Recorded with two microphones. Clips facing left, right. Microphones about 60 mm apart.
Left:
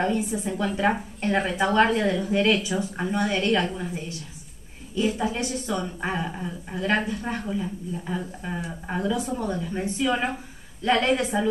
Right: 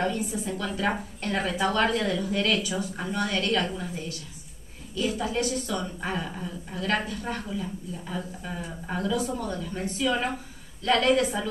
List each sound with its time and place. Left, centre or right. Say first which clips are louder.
0.0 s a woman's voice: left 3 dB; left